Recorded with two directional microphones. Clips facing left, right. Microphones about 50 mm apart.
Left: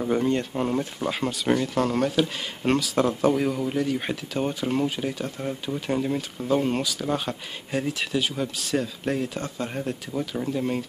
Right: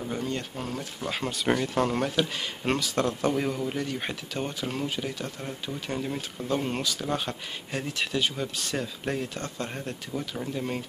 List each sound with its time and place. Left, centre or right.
0.1 s speech: left
1.0 s speech: centre